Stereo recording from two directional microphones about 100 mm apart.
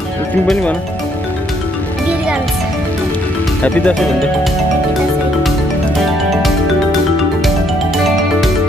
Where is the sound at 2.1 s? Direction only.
10° right (ahead or behind).